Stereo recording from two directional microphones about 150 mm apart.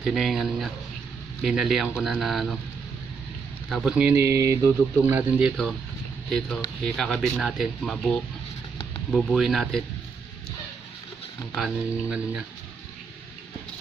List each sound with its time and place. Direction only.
0.0 s speech: centre (ahead or behind)
3.6 s speech: centre (ahead or behind); by 5.2 s 20° right (ahead or behind)
6.8 s speech: 5° left (ahead or behind)
11.5 s speech: 5° right (ahead or behind)